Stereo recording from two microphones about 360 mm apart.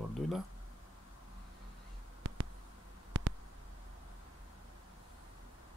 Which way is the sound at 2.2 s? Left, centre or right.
Right.